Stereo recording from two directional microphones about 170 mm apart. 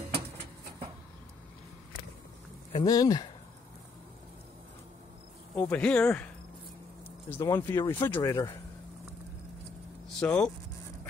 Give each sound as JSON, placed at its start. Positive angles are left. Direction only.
{"t": 2.7, "sound": "speech", "side_deg": 20}
{"t": 5.6, "sound": "speech", "side_deg": 10}
{"t": 7.2, "sound": "speech", "side_deg": 15}
{"t": 10.0, "sound": "speech", "side_deg": 5}